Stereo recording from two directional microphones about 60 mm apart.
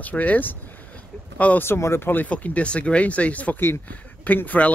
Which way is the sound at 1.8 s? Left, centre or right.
Left.